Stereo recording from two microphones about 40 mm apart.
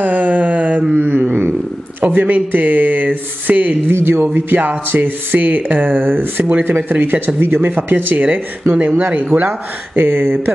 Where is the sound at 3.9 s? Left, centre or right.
Right.